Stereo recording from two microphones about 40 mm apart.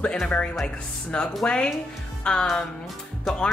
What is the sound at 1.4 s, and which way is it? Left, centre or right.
Speech, left.